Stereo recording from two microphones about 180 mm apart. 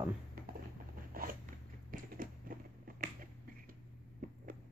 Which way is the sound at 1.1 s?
55° right (ahead or behind).